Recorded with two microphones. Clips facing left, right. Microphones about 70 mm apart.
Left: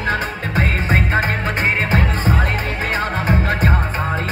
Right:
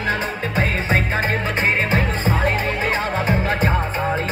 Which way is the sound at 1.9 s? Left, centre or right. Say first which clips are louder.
Left 1 dB; left.